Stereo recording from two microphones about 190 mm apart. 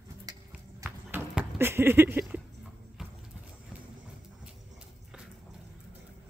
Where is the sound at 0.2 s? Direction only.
20° right (ahead or behind).